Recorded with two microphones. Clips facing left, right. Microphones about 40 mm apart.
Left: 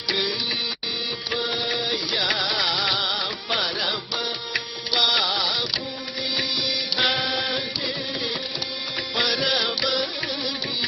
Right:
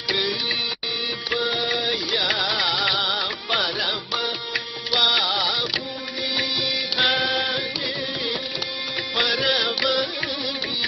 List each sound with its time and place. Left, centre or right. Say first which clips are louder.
1.8 s music: right 1 dB; centre
2.7 s music: right 1 dB; right
3.0 s music: right 2 dB; centre
4.9 s music: right 1 dB; centre
7.0 s music: right 2 dB; centre
9.3 s music: right 2 dB; centre